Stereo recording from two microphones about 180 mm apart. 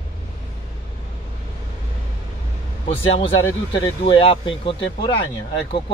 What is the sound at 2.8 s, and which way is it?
Speech, 35° left (ahead or behind).